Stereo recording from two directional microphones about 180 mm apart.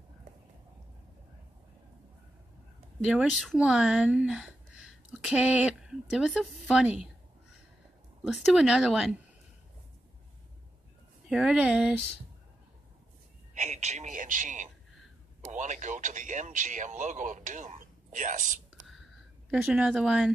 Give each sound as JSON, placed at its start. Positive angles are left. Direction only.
{"t": 3.1, "sound": "speech", "side_deg": 0}
{"t": 8.2, "sound": "speech", "side_deg": -5}
{"t": 11.2, "sound": "speech", "side_deg": -5}
{"t": 13.6, "sound": "speech", "side_deg": -40}
{"t": 19.5, "sound": "speech", "side_deg": -5}